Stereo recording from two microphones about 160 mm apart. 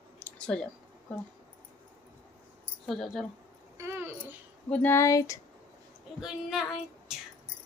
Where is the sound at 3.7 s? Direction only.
15° right (ahead or behind).